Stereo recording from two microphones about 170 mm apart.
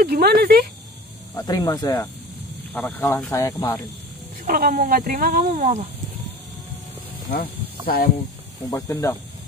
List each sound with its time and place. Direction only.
0.0 s speech: 65° right (ahead or behind)
1.3 s speech: 20° left (ahead or behind)
4.5 s speech: 60° right (ahead or behind); by 5.9 s 45° right (ahead or behind)
7.8 s speech: 60° left (ahead or behind)
8.6 s speech: 20° left (ahead or behind)